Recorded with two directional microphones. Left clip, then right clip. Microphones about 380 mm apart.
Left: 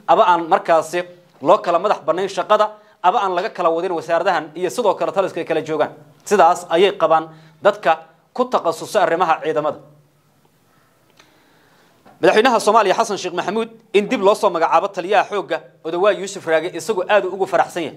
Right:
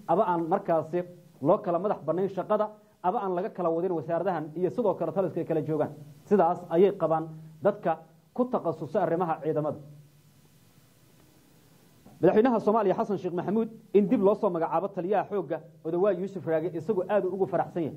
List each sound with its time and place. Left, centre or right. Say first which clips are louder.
0.0 s a man's voice: left 12 dB; centre
12.2 s a man's voice: left 9 dB; centre